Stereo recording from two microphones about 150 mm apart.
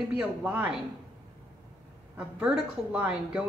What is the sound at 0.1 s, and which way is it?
Speech, 5° right (ahead or behind).